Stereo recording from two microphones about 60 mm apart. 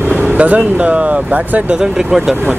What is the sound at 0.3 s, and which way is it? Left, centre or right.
Speech, right.